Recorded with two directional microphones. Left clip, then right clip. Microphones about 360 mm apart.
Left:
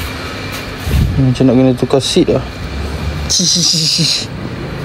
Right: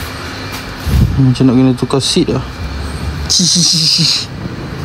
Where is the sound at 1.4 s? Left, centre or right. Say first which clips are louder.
Left 2 dB; centre.